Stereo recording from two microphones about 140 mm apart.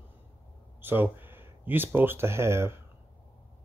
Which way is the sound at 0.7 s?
15° right (ahead or behind).